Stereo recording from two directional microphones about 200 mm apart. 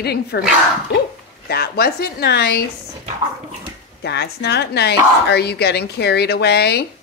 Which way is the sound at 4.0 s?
55° left (ahead or behind).